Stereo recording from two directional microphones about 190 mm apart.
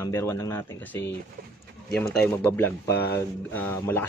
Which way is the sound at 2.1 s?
10° left (ahead or behind).